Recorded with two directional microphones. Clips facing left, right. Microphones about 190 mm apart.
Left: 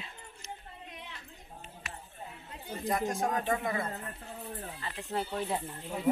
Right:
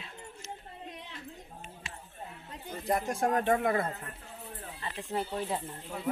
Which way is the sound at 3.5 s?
55° right (ahead or behind).